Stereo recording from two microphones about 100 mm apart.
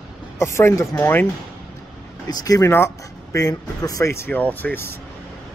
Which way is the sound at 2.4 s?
35° left (ahead or behind).